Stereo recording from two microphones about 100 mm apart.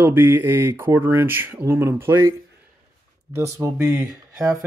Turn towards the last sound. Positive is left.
turn(degrees=-30)  # may be behind; listen again after turning